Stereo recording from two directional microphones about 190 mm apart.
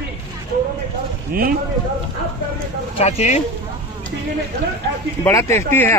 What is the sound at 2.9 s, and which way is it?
Speech, 35° left (ahead or behind).